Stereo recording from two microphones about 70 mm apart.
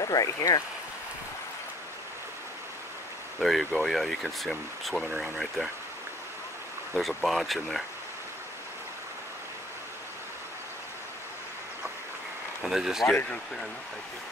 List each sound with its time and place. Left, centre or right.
0.0 s speech: left
3.4 s speech: centre
7.0 s speech: centre
12.6 s speech: centre